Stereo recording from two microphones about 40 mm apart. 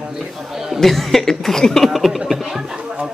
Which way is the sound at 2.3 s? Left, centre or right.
Centre.